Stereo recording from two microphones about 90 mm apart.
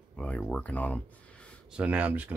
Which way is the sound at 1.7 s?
15° right (ahead or behind).